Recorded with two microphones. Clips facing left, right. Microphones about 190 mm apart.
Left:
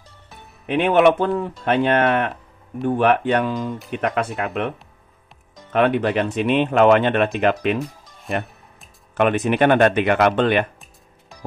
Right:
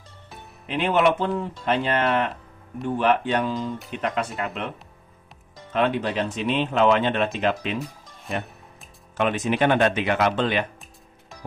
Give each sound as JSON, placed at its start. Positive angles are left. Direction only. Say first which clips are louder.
{"t": 0.7, "sound": "speech", "louder": "left 5 dB", "side_deg": 55}
{"t": 5.7, "sound": "speech", "louder": "left 5 dB", "side_deg": 60}
{"t": 9.1, "sound": "speech", "louder": "left 5 dB", "side_deg": 60}